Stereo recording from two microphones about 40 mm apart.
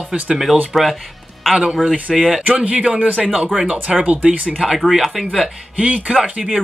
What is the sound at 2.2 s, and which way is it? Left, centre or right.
Speech, centre.